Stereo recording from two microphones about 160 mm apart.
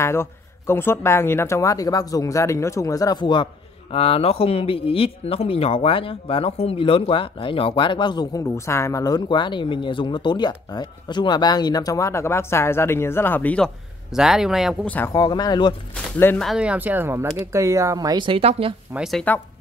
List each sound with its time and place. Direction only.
0.0 s speech: 15° left (ahead or behind)
14.1 s speech: 5° right (ahead or behind)
15.1 s speech: 25° left (ahead or behind)
16.2 s speech: 15° left (ahead or behind)
16.4 s speech: 5° right (ahead or behind); by 18.8 s 35° right (ahead or behind)
18.9 s speech: centre (ahead or behind)